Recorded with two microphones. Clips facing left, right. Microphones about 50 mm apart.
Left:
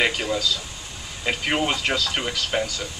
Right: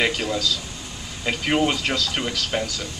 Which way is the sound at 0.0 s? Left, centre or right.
Centre.